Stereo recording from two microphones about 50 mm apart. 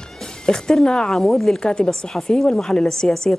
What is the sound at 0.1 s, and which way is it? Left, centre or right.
Speech, centre.